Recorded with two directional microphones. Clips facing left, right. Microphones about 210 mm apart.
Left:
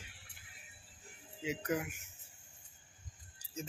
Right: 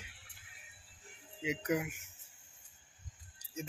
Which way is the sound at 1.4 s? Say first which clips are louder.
Right 2 dB; 20° right (ahead or behind).